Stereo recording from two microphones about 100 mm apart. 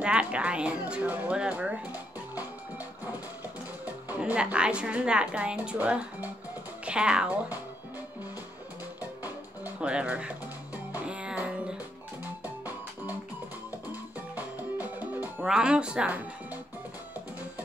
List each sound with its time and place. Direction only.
0.0 s speech: 10° right (ahead or behind)
3.8 s a woman's voice: 15° right (ahead or behind)
9.8 s speech: 10° right (ahead or behind)
10.9 s music: 10° right (ahead or behind)
14.3 s music: 15° right (ahead or behind)
15.4 s speech: 10° right (ahead or behind)